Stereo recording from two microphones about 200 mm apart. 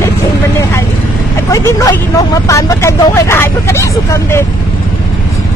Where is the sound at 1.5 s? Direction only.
15° left (ahead or behind).